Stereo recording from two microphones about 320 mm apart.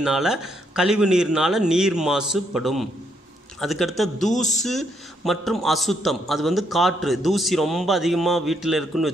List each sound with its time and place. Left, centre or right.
0.0 s a man's voice: centre
4.2 s speech: left
4.6 s a man's voice: centre